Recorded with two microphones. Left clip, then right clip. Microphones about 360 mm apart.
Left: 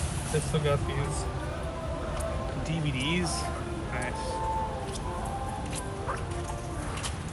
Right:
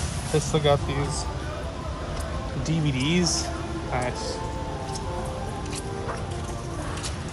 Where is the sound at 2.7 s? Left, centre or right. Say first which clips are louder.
Right 6 dB; centre.